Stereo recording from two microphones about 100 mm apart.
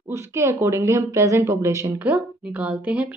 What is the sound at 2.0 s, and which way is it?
Speech, 15° right (ahead or behind).